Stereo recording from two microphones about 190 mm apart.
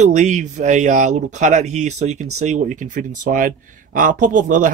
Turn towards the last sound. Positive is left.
turn(degrees=-40)  # may be behind; listen again after turning